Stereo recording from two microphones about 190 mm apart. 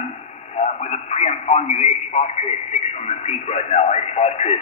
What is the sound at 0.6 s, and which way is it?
A man's voice, 35° left (ahead or behind).